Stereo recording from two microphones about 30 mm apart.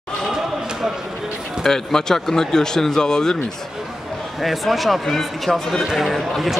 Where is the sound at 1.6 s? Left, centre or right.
Centre.